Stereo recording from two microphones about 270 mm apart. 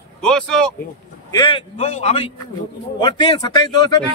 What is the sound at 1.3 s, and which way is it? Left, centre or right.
A man's voice, centre.